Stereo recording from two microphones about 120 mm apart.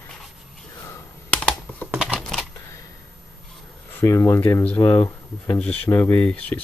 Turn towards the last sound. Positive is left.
turn(degrees=10)  # may be behind; listen again after turning